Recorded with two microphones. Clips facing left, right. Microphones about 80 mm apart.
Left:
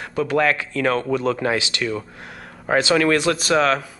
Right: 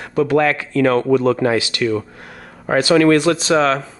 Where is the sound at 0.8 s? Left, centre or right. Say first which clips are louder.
Right 8 dB; right.